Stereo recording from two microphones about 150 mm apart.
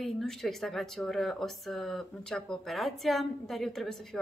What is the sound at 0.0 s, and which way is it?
Speech, 5° left (ahead or behind).